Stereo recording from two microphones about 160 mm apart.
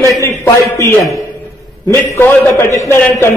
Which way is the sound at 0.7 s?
15° left (ahead or behind).